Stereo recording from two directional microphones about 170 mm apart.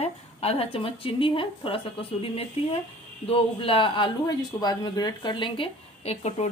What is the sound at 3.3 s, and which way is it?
Speech, 35° left (ahead or behind).